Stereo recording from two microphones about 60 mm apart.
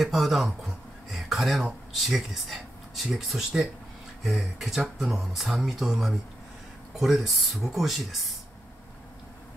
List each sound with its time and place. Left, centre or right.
0.0 s speech: centre